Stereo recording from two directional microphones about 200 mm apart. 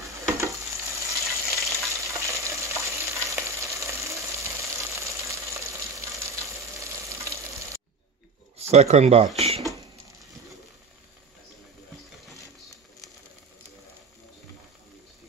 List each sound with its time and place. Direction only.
0.0 s frying: 15° right (ahead or behind)
1.2 s frying: centre (ahead or behind)
1.8 s frying: 15° right (ahead or behind)
8.5 s speech: 30° right (ahead or behind)